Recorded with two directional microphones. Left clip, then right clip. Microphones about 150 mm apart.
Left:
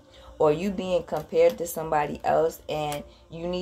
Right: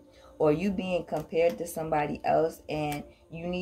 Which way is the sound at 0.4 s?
35° right (ahead or behind).